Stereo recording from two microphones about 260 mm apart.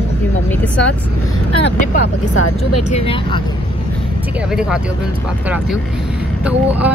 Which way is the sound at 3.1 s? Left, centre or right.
Centre.